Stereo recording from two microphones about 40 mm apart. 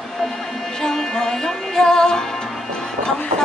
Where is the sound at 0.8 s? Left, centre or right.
Centre.